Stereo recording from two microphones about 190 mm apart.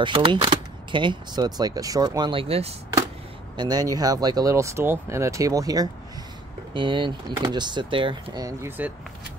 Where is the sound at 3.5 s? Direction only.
20° right (ahead or behind).